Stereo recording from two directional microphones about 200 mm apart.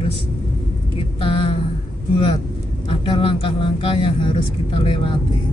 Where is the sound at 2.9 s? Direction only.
25° left (ahead or behind).